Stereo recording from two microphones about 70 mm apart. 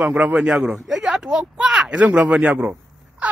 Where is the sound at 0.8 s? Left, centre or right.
Centre.